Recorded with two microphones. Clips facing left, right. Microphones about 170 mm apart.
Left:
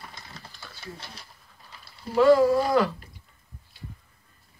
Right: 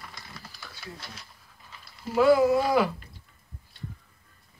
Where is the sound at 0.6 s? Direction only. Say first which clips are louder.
Left 2 dB; 30° left (ahead or behind).